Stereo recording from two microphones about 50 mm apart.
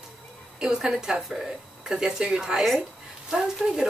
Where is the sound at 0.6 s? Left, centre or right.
Centre.